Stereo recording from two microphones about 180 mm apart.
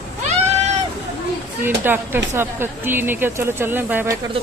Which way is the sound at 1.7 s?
10° right (ahead or behind).